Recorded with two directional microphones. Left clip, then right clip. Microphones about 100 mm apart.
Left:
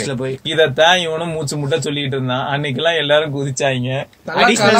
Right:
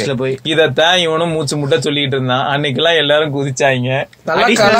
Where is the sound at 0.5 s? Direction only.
15° right (ahead or behind).